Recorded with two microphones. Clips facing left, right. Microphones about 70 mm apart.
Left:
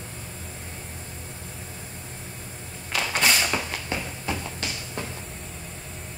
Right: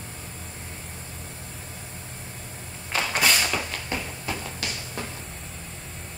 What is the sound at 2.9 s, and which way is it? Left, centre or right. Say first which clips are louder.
Creak: right 1 dB; right.